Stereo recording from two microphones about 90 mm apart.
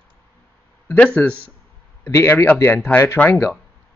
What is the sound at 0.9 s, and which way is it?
Speech, 15° left (ahead or behind).